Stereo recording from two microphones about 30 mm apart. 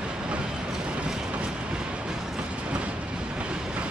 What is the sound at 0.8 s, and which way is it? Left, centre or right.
Train, right.